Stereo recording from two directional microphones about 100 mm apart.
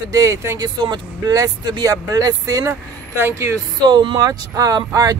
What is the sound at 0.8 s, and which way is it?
Speech, 45° right (ahead or behind).